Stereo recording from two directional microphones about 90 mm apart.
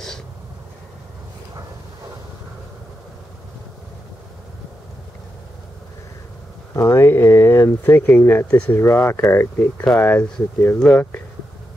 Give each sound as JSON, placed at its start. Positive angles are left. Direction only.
{"t": 6.7, "sound": "speech", "side_deg": 30}
{"t": 8.8, "sound": "speech", "side_deg": 25}
{"t": 10.8, "sound": "speech", "side_deg": 10}